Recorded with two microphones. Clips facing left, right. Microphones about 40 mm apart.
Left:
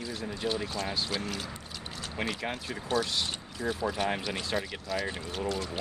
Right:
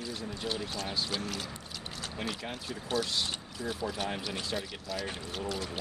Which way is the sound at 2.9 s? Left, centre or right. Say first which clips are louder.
Left 2 dB; centre.